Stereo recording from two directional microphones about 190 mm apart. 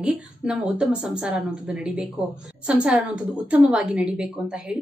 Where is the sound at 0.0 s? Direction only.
5° right (ahead or behind).